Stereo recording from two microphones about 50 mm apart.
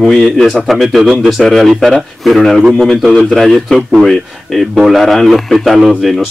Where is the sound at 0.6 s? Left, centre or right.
Centre.